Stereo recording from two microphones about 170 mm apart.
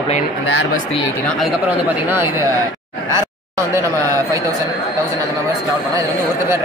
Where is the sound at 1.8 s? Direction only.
15° right (ahead or behind).